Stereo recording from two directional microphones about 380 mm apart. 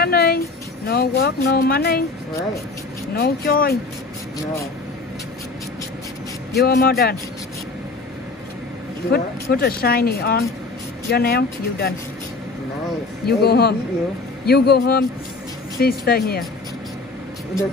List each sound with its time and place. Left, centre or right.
0.0 s music: left
0.8 s speech: left
3.2 s speech: left
6.5 s speech: left
9.1 s speech: left
13.2 s speech: left